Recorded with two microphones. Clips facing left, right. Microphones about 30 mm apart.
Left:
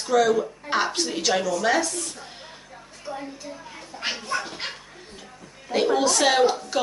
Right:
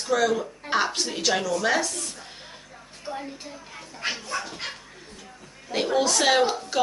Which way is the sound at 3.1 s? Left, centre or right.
Right.